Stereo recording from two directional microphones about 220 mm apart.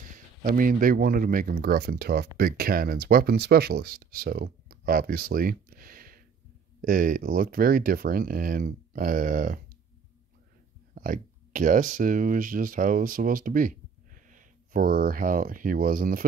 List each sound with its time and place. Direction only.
0.1 s speech: 40° right (ahead or behind)
11.0 s speech: 35° right (ahead or behind)